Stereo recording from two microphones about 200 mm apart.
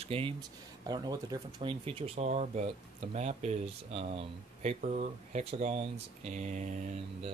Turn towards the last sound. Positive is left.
turn(degrees=-40)  # may be behind; listen again after turning